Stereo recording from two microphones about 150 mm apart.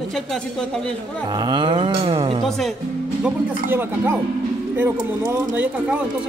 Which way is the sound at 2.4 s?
Centre (ahead or behind).